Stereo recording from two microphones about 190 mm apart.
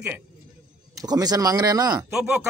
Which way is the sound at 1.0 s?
20° right (ahead or behind).